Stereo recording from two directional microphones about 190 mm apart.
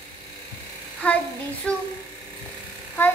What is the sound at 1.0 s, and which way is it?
Speech, 5° left (ahead or behind).